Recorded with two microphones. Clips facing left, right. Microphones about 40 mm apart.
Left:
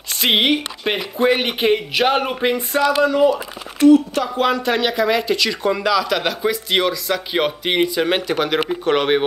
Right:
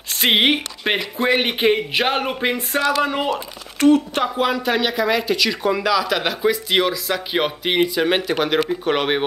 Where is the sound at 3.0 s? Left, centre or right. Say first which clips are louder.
Left 5 dB; right.